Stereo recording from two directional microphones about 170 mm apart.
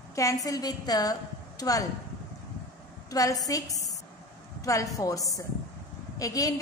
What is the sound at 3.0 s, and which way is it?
A woman's voice, 20° left (ahead or behind).